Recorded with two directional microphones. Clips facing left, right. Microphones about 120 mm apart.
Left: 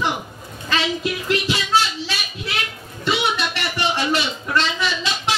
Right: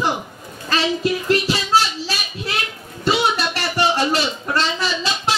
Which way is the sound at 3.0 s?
40° right (ahead or behind).